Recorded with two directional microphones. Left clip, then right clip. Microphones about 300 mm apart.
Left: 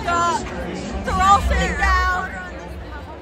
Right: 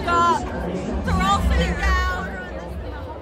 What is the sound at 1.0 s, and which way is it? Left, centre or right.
Speech, centre.